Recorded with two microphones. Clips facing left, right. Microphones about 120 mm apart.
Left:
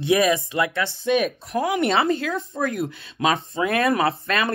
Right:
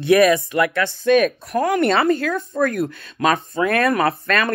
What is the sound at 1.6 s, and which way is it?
Speech, 50° right (ahead or behind).